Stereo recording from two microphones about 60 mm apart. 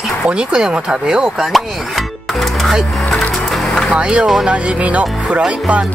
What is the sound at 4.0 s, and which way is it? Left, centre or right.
Speech, centre.